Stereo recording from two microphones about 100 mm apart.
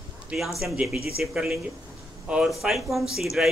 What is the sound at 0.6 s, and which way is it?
Speech, 5° right (ahead or behind).